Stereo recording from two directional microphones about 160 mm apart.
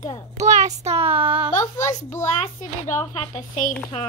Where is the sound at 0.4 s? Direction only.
45° right (ahead or behind).